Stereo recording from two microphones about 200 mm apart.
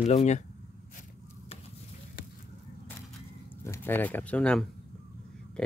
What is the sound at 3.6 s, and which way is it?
Speech, 10° left (ahead or behind).